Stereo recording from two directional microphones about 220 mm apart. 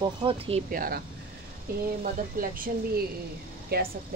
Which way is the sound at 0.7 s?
40° right (ahead or behind).